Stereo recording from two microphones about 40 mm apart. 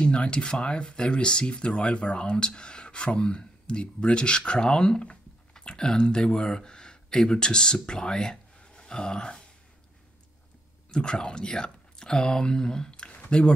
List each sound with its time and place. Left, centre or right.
0.0 s speech: left
10.9 s speech: centre